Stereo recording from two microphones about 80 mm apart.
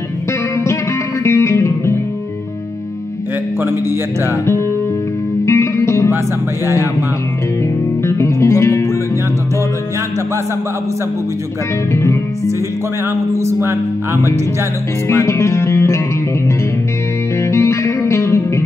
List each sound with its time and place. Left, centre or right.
1.2 s music: left
5.4 s music: left
6.1 s speech: right
8.0 s music: left
11.9 s music: left
13.1 s speech: right
15.0 s music: left
17.4 s music: left